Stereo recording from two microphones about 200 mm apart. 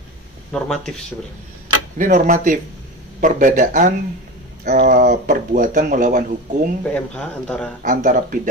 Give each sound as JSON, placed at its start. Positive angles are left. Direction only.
{"t": 0.5, "sound": "speech", "side_deg": 5}
{"t": 2.0, "sound": "speech", "side_deg": -40}
{"t": 6.9, "sound": "speech", "side_deg": 5}
{"t": 7.8, "sound": "speech", "side_deg": -40}